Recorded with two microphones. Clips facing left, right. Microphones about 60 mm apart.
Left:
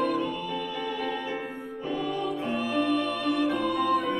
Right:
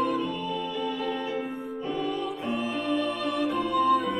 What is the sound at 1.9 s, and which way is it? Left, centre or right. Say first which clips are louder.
Music: left 1 dB; centre.